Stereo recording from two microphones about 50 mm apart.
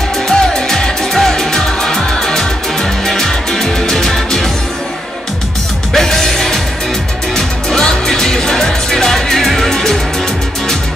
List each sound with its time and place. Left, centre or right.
0.3 s music: centre
5.9 s music: centre